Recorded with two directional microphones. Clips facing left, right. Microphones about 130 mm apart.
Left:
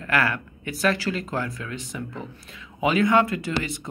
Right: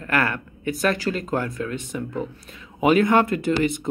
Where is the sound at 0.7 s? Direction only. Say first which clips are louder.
Right 2 dB; 45° right (ahead or behind).